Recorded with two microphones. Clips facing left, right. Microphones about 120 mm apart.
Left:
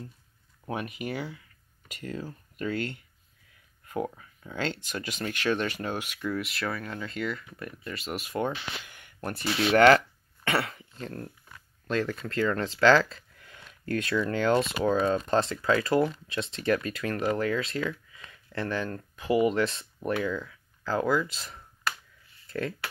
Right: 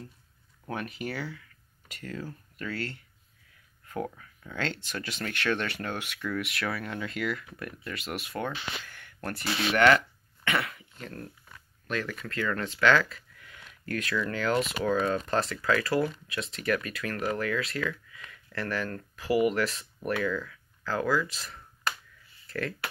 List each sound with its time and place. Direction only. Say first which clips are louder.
0.7 s speech: left 1 dB; 5° left (ahead or behind)
8.4 s speech: left 5 dB; 15° left (ahead or behind)
9.7 s speech: left 4 dB; 30° left (ahead or behind)